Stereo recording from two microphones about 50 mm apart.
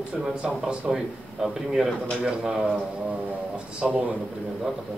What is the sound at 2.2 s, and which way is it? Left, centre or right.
Speech, centre.